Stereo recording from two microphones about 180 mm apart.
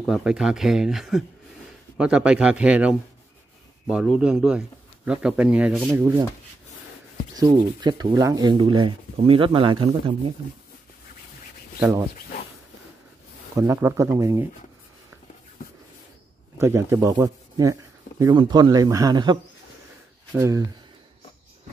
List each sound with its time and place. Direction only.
0.0 s speech: 5° right (ahead or behind)
7.3 s speech: 25° right (ahead or behind)
13.6 s speech: 15° right (ahead or behind)
16.5 s speech: 15° right (ahead or behind)
20.3 s speech: 15° right (ahead or behind)